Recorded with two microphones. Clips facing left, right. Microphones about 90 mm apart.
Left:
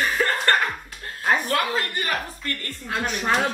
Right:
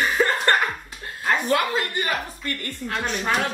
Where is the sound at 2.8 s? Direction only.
10° left (ahead or behind).